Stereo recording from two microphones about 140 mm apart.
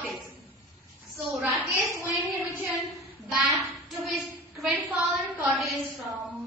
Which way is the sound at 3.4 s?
Centre (ahead or behind).